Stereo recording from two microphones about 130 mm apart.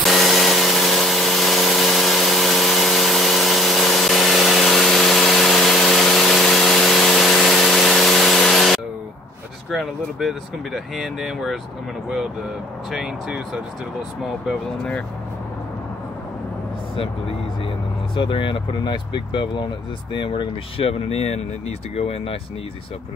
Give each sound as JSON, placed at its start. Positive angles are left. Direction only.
{"t": 0.0, "sound": "a sound", "side_deg": 0}
{"t": 9.7, "sound": "speech", "side_deg": -5}
{"t": 12.9, "sound": "speech", "side_deg": -5}
{"t": 18.1, "sound": "speech", "side_deg": 40}